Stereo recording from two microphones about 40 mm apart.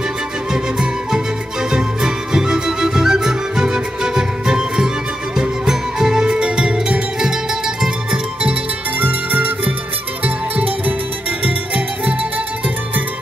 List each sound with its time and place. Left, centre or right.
0.5 s music: centre
8.9 s music: right